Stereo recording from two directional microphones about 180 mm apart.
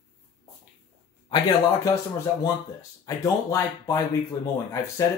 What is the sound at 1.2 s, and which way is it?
Speech, 25° left (ahead or behind).